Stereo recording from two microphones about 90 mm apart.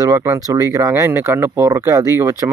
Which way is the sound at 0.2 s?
35° right (ahead or behind).